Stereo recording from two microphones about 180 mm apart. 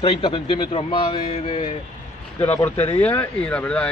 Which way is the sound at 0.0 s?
30° left (ahead or behind).